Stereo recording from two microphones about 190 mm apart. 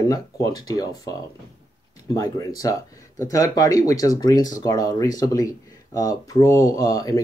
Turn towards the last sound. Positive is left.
turn(degrees=20)  # may be behind; listen again after turning